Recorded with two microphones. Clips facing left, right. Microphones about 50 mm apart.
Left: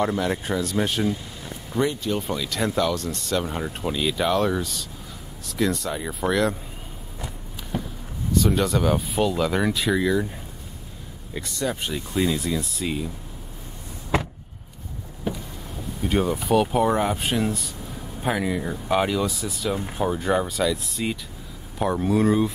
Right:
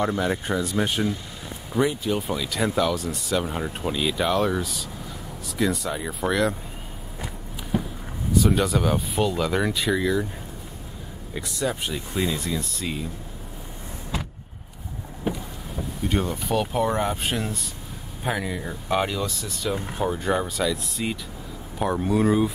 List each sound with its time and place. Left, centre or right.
0.0 s speech: centre
7.7 s vehicle: centre
8.3 s speech: centre
11.3 s speech: centre
14.1 s vehicle: left
15.3 s vehicle: centre
16.0 s speech: centre